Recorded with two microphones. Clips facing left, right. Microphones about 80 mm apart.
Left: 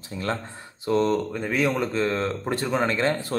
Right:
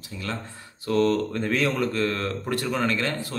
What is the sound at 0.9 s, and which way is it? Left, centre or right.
Speech, centre.